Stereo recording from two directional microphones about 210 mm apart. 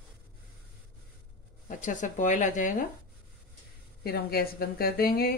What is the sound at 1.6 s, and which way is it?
Speech, 35° left (ahead or behind).